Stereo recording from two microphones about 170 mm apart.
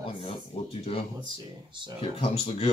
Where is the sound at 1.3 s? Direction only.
25° right (ahead or behind).